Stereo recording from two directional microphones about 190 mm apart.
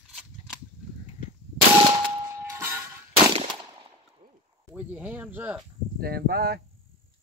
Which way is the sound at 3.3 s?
25° right (ahead or behind).